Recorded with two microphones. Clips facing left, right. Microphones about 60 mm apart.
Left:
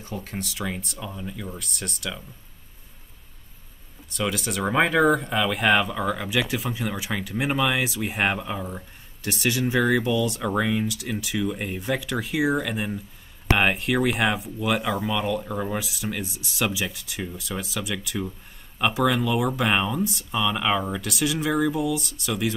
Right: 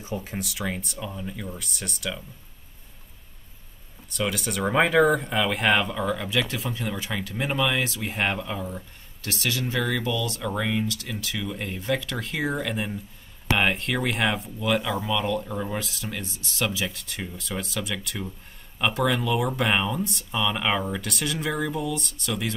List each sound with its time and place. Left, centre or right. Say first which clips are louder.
0.0 s speech: right 1 dB; centre
4.1 s speech: left 1 dB; centre
14.8 s speech: left 1 dB; left
15.2 s speech: left 1 dB; centre